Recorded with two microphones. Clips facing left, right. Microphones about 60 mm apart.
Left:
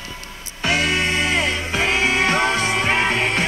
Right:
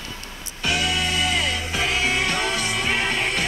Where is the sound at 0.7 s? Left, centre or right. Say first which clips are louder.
Left 4 dB; left.